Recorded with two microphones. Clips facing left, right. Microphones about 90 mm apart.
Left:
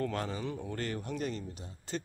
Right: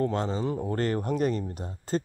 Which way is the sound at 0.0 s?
30° right (ahead or behind).